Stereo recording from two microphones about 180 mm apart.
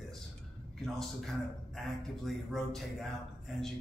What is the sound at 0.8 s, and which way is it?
Speech, centre (ahead or behind).